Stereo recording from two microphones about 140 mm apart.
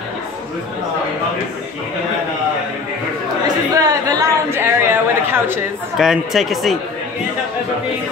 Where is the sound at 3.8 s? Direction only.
25° right (ahead or behind).